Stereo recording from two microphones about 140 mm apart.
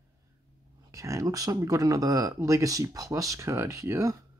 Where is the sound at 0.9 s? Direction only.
20° right (ahead or behind).